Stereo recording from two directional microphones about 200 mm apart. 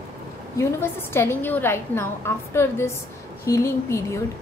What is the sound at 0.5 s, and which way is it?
A woman's voice, 10° left (ahead or behind).